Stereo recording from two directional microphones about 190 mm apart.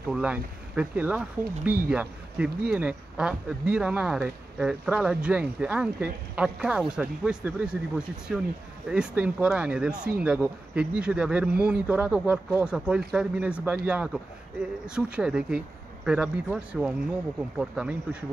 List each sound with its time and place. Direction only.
0.1 s speech: 5° right (ahead or behind)